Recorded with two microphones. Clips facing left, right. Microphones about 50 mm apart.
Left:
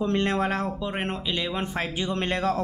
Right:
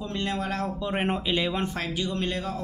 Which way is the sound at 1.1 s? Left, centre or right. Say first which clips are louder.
Right 3 dB; centre.